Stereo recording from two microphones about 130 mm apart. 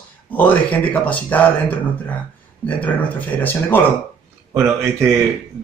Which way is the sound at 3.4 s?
15° left (ahead or behind).